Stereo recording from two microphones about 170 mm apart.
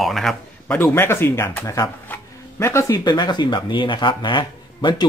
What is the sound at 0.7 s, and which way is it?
Speech, 15° left (ahead or behind).